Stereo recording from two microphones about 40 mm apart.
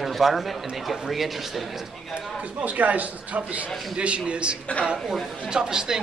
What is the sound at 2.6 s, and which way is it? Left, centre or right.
A man's voice, right.